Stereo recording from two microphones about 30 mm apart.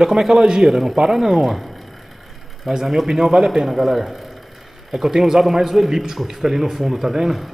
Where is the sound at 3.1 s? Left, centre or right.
Centre.